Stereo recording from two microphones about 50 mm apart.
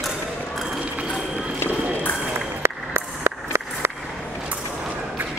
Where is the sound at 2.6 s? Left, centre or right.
Right.